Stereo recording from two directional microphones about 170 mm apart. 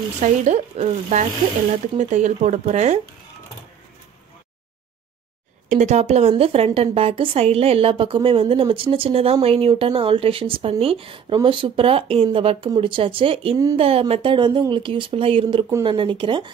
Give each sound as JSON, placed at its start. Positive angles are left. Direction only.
{"t": 0.2, "sound": "speech", "side_deg": -45}
{"t": 5.7, "sound": "a woman's voice", "side_deg": -45}